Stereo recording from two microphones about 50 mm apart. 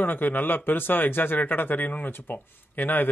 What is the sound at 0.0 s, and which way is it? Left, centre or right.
A man's voice, left.